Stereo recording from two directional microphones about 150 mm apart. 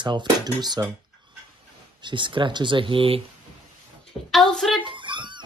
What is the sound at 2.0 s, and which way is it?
Speech, 30° right (ahead or behind).